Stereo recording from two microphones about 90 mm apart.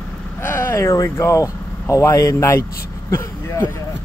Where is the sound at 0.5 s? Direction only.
25° left (ahead or behind).